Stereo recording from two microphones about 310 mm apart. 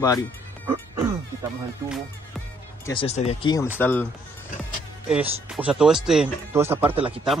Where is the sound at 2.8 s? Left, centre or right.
Centre.